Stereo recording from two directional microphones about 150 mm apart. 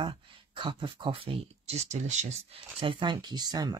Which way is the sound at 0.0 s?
35° right (ahead or behind).